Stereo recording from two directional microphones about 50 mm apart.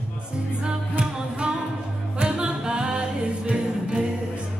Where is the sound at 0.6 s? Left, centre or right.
Centre.